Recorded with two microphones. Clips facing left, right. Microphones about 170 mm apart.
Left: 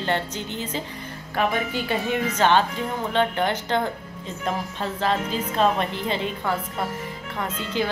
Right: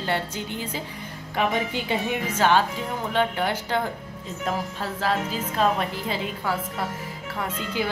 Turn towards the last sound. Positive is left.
turn(degrees=-10)  # may be behind; listen again after turning